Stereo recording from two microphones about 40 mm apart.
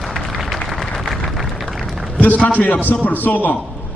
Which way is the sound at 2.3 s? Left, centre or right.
Left.